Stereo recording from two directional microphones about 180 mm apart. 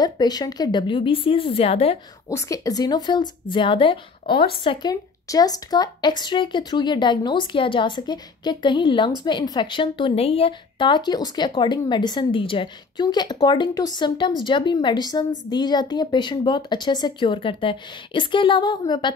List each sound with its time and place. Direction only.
0.0 s speech: 20° left (ahead or behind)
2.2 s speech: 15° left (ahead or behind)